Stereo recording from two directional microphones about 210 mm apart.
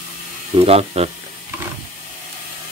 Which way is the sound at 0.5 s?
30° right (ahead or behind).